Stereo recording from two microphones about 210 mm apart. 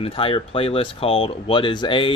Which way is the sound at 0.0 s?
25° left (ahead or behind).